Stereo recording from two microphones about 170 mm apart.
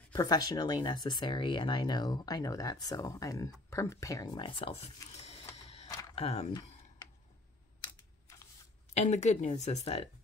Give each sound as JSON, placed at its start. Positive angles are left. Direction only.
{"t": 0.1, "sound": "speech", "side_deg": 20}
{"t": 7.8, "sound": "typing", "side_deg": 20}
{"t": 8.9, "sound": "speech", "side_deg": 40}